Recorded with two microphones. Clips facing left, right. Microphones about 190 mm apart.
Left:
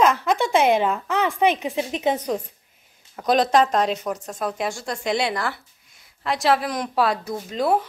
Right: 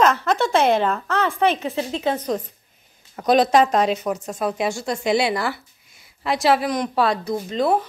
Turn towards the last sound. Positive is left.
turn(degrees=5)  # may be behind; listen again after turning